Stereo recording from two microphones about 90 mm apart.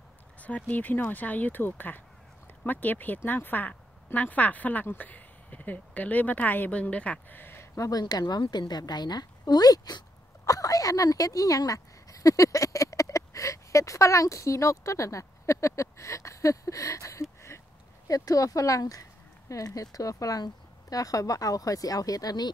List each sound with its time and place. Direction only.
0.4 s speech: 15° left (ahead or behind); by 8.0 s 35° left (ahead or behind)
8.0 s a woman's voice: 50° left (ahead or behind)